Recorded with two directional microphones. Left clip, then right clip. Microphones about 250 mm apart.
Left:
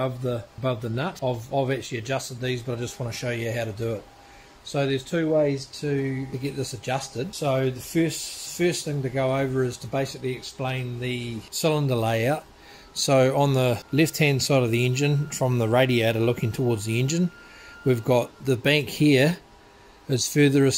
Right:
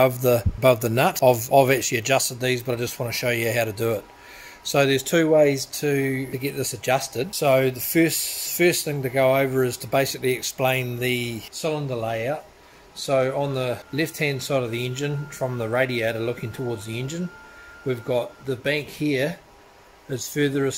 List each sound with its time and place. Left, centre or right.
0.0 s speech: right
6.4 s speech: centre; by 11.3 s right
11.5 s speech: left